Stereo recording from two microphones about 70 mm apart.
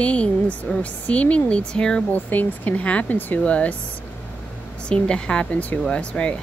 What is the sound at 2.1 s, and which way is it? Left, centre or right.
A woman's voice, left.